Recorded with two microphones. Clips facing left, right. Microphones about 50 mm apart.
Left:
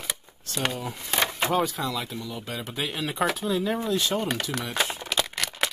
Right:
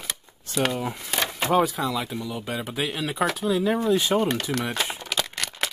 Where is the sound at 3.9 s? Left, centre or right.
Centre.